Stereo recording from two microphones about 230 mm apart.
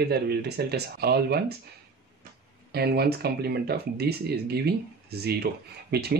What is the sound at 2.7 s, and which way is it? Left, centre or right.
Speech, right.